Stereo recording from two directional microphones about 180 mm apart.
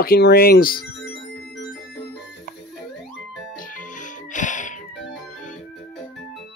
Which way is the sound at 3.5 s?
50° left (ahead or behind).